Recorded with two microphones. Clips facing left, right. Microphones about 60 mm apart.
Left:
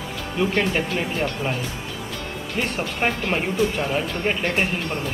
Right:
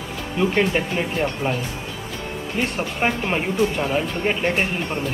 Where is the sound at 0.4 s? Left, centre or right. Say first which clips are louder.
Right 2 dB; centre.